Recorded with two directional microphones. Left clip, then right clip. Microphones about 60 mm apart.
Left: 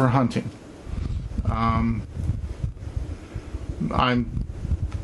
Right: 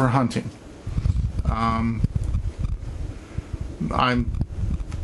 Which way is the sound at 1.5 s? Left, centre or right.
Right.